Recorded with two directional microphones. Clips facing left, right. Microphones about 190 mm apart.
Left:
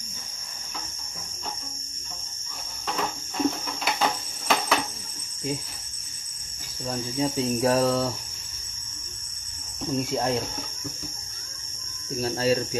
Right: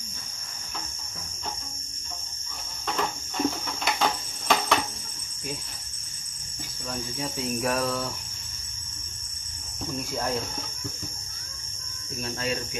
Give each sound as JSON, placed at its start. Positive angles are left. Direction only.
{"t": 2.9, "sound": "cricket", "side_deg": 0}
{"t": 6.9, "sound": "cricket", "side_deg": 25}
{"t": 9.8, "sound": "cricket", "side_deg": 20}
{"t": 12.2, "sound": "speech", "side_deg": 35}